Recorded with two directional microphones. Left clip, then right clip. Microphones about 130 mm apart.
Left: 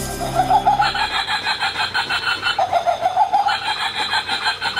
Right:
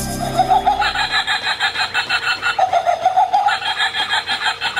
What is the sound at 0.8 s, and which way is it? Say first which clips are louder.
Snicker: right 1 dB; 25° right (ahead or behind).